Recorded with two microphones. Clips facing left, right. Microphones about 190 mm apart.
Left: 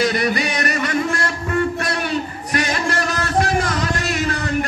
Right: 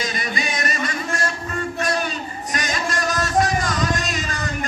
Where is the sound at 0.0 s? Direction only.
65° left (ahead or behind).